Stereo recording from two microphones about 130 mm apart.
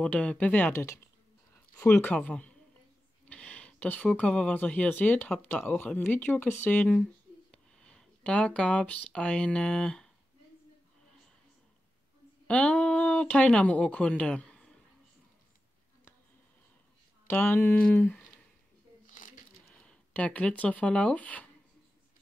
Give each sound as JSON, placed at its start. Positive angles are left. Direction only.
{"t": 0.0, "sound": "speech", "side_deg": 10}
{"t": 12.4, "sound": "speech", "side_deg": 10}
{"t": 17.3, "sound": "speech", "side_deg": 15}
{"t": 19.0, "sound": "a sound", "side_deg": 90}
{"t": 19.7, "sound": "speech", "side_deg": 10}